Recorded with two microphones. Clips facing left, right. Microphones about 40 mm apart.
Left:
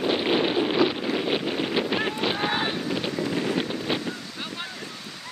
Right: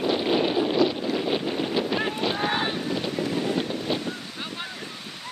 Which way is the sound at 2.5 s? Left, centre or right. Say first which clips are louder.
Even; centre.